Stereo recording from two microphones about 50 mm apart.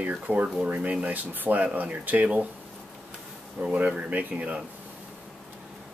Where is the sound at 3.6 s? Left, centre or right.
Right.